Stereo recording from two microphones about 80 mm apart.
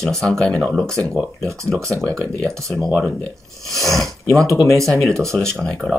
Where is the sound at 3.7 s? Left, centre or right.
Centre.